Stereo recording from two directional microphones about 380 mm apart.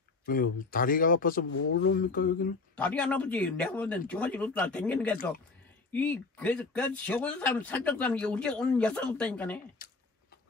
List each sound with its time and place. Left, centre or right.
0.3 s speech: left
2.7 s speech: centre